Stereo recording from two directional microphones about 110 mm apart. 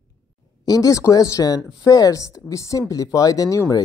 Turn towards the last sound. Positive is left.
turn(degrees=30)  # may be behind; listen again after turning